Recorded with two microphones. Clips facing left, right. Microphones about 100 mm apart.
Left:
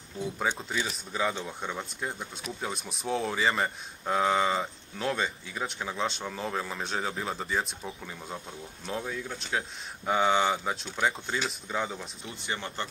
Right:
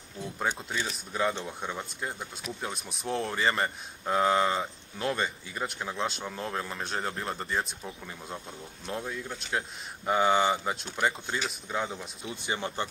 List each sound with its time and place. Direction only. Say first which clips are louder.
0.4 s speech: even; centre (ahead or behind)
12.3 s speech: right 3 dB; 15° right (ahead or behind)